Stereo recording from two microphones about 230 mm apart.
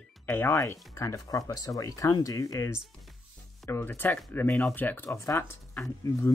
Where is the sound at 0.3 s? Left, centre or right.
Centre.